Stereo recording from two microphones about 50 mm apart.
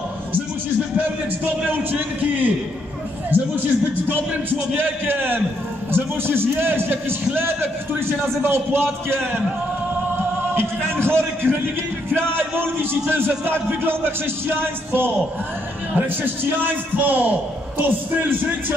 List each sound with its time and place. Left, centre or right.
0.9 s a man's voice: right
4.7 s a man's voice: right
10.1 s a sound: right
12.4 s a man's voice: right